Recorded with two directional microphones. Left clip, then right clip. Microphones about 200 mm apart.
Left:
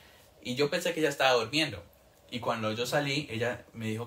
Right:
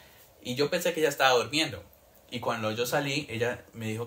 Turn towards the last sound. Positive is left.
turn(degrees=-20)  # may be behind; listen again after turning